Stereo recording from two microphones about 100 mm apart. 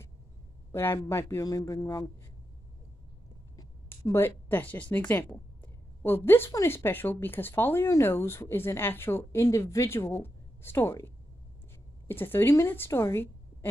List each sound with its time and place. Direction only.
0.7 s speech: 25° left (ahead or behind)
4.1 s speech: 20° left (ahead or behind)
12.1 s a woman's voice: 20° left (ahead or behind)